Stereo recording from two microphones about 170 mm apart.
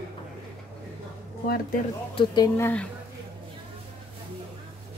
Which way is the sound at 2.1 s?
25° left (ahead or behind).